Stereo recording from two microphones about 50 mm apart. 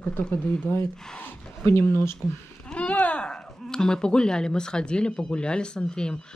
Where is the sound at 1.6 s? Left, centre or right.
Left.